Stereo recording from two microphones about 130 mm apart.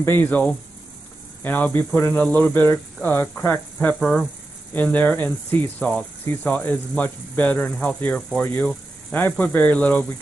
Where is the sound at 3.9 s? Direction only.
5° left (ahead or behind).